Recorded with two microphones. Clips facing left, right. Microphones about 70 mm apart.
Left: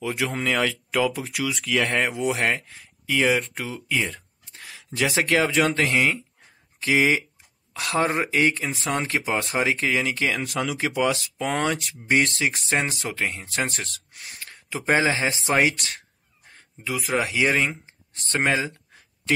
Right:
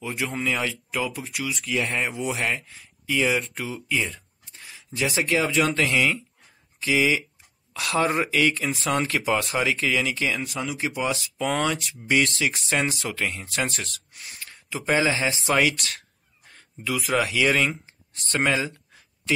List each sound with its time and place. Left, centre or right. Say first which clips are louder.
0.0 s speech: left 3 dB; left
0.4 s speech: left 2 dB; left
1.7 s speech: left 3 dB; left
5.7 s speech: left 1 dB; left
7.7 s speech: even; left
8.6 s speech: right 2 dB; left
16.5 s speech: right 1 dB; left
18.3 s speech: left 1 dB; left